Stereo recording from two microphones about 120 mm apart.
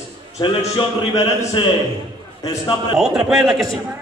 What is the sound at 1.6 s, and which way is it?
Speech, 40° left (ahead or behind).